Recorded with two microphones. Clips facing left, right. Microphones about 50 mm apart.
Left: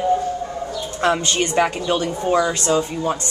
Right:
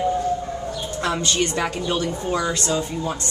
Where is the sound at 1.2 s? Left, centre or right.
Left.